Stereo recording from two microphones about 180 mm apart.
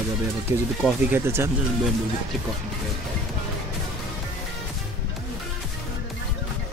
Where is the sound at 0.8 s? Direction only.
10° right (ahead or behind).